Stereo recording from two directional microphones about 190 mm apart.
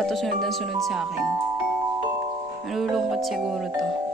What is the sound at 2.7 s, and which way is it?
Speech, centre (ahead or behind).